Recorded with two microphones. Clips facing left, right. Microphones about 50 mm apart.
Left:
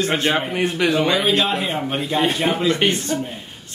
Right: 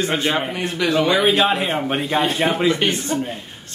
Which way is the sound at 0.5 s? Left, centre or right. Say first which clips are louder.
Left 2 dB; left.